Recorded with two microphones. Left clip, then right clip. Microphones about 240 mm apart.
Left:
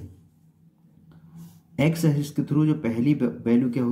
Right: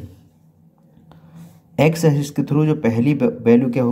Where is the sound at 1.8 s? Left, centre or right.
Right.